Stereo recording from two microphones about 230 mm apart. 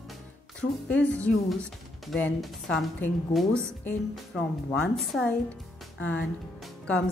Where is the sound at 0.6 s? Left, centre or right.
Centre.